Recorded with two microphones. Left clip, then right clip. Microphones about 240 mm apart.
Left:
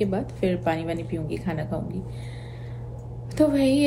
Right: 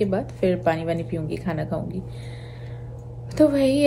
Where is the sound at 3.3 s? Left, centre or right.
Centre.